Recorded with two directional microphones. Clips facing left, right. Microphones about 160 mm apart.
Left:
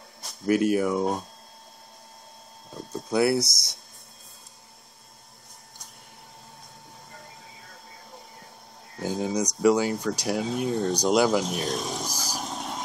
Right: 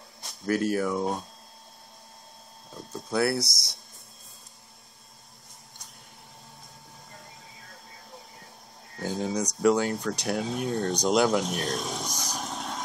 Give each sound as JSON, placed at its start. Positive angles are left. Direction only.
{"t": 0.2, "sound": "a sound", "side_deg": 0}
{"t": 0.6, "sound": "speech", "side_deg": 15}
{"t": 0.8, "sound": "speech", "side_deg": 0}
{"t": 2.7, "sound": "speech", "side_deg": 0}
{"t": 9.0, "sound": "speech", "side_deg": 0}